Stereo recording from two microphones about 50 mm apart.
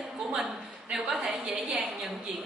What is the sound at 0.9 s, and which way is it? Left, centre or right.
Speech, centre.